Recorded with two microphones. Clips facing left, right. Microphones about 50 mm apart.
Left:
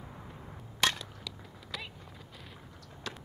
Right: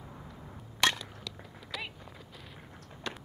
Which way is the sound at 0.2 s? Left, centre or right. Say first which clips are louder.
Even; centre.